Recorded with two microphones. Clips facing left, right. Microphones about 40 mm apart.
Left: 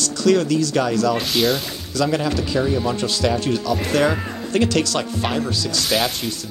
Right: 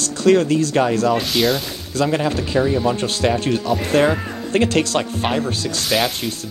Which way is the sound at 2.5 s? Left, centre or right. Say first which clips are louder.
Right 4 dB; centre.